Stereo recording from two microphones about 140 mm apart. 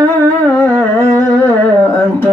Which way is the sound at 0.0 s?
15° left (ahead or behind).